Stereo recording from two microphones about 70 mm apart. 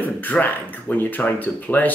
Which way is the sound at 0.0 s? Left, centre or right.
Left.